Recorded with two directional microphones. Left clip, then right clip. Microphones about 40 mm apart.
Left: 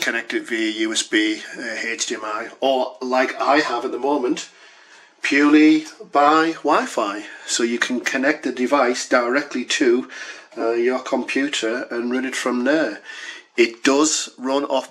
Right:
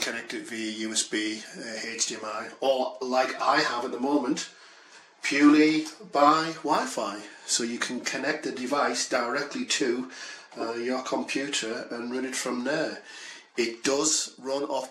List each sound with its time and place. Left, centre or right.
0.0 s speech: left
5.3 s speech: left